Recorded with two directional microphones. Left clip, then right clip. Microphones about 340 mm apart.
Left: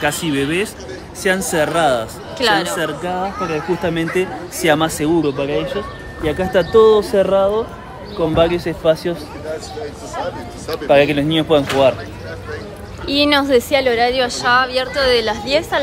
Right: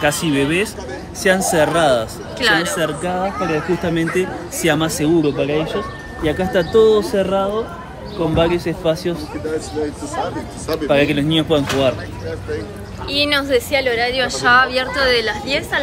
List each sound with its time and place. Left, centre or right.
0.0 s a woman's voice: centre; by 9.2 s left
10.1 s speech: right
10.9 s speech: left
13.1 s a woman's voice: centre